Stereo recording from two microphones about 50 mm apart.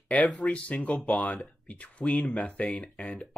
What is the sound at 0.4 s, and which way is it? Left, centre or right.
Speech, left.